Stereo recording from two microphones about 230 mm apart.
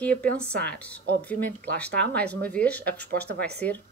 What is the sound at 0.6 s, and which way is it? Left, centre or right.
Speech, centre.